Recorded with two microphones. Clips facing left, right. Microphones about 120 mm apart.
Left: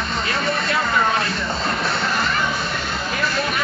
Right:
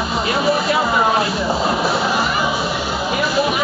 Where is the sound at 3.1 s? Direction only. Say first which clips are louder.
Right 6 dB; 10° right (ahead or behind).